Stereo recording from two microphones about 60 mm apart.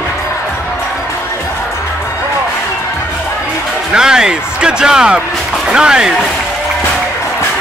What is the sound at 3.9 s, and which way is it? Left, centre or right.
Speech, centre.